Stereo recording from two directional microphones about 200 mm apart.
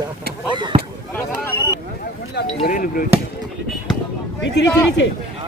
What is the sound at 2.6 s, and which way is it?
Speech, 45° left (ahead or behind).